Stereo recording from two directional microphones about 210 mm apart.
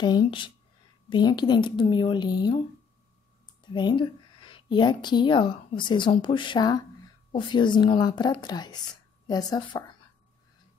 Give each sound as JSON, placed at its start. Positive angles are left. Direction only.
{"t": 0.0, "sound": "a woman's voice", "side_deg": 20}
{"t": 3.7, "sound": "a woman's voice", "side_deg": 20}